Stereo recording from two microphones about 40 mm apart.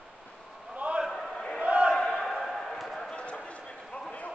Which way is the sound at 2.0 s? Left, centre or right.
Centre.